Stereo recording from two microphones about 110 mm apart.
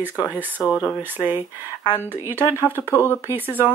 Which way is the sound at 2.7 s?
25° left (ahead or behind).